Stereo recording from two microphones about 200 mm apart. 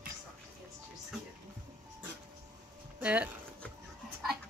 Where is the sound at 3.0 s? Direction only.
5° right (ahead or behind).